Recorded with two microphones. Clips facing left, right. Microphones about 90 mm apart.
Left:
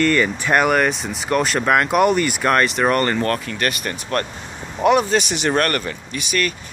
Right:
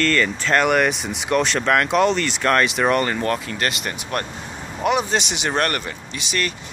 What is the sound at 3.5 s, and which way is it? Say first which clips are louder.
Speech: left 2 dB; 25° right (ahead or behind).